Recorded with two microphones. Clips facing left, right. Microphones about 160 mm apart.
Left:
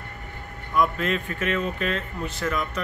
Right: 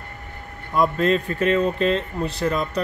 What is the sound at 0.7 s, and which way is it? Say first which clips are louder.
Speech: right 4 dB; 35° right (ahead or behind).